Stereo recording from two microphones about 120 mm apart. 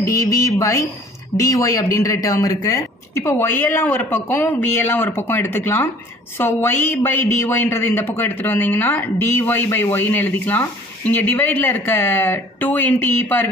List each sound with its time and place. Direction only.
0.0 s speech: 25° left (ahead or behind)